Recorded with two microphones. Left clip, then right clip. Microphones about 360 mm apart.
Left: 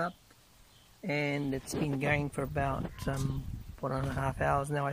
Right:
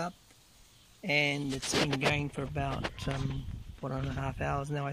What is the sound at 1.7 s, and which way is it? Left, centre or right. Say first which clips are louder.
Speech: right 8 dB; right.